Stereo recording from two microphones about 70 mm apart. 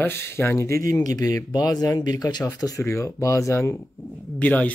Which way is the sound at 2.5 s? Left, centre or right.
Left.